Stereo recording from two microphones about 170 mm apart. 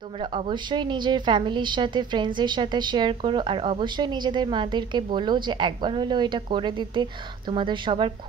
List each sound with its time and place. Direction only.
0.2 s a woman's voice: 30° right (ahead or behind)